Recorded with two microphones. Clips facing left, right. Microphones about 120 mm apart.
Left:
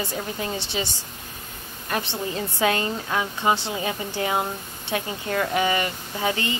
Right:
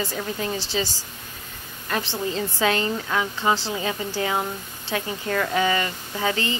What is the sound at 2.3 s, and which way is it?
Speech, 20° left (ahead or behind).